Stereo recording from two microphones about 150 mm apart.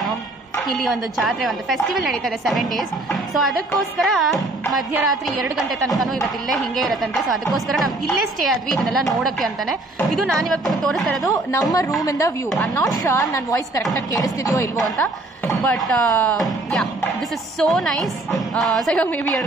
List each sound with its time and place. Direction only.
0.7 s a woman's voice: centre (ahead or behind)
11.2 s a woman's voice: 25° left (ahead or behind)
15.0 s a woman's voice: 10° left (ahead or behind)